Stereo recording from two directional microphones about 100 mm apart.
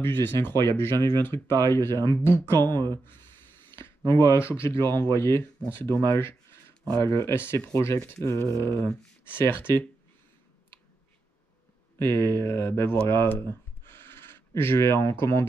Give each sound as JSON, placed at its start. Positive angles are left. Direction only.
{"t": 0.0, "sound": "speech", "side_deg": 25}
{"t": 2.6, "sound": "speech", "side_deg": -45}
{"t": 2.9, "sound": "a sound", "side_deg": 25}
{"t": 4.0, "sound": "speech", "side_deg": -40}
{"t": 4.4, "sound": "speech", "side_deg": 25}
{"t": 6.1, "sound": "a sound", "side_deg": 25}
{"t": 7.0, "sound": "speech", "side_deg": 25}
{"t": 12.0, "sound": "speech", "side_deg": 25}